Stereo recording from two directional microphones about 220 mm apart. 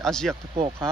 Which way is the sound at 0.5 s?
25° right (ahead or behind).